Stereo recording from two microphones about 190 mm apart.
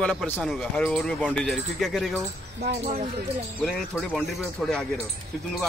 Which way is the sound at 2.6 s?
55° right (ahead or behind).